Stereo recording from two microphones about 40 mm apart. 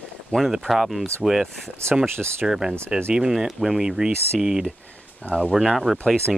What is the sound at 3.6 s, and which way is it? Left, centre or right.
Speech, centre.